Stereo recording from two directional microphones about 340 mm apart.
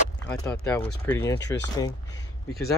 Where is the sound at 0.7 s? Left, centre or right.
Centre.